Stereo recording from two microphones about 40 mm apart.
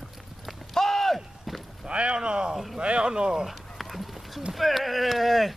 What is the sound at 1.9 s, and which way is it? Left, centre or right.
Speech, right.